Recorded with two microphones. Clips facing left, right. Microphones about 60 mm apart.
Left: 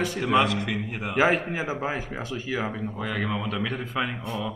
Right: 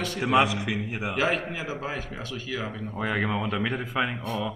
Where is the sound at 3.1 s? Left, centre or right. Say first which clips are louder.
Right 2 dB; centre.